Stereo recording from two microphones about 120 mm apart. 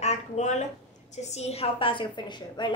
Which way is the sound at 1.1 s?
70° left (ahead or behind).